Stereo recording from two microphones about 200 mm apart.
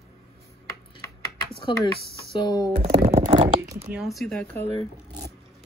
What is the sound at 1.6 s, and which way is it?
Speech, 25° left (ahead or behind).